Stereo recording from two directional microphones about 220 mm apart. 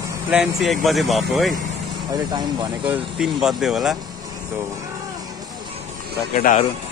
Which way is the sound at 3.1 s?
Centre (ahead or behind).